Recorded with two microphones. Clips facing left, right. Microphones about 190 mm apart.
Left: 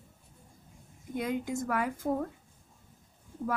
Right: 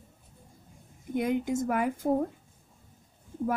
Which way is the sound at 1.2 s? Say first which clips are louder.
Right 5 dB; 20° right (ahead or behind).